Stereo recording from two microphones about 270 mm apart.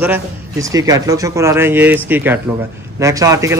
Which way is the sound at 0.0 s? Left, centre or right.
Centre.